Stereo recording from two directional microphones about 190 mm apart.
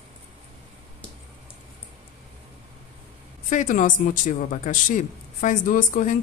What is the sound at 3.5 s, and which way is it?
A woman's voice, 40° left (ahead or behind).